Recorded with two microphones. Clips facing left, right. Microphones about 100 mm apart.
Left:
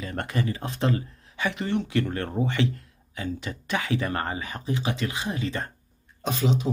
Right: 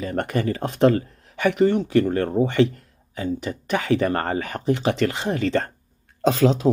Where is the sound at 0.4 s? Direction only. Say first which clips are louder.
Right 9 dB; 50° right (ahead or behind).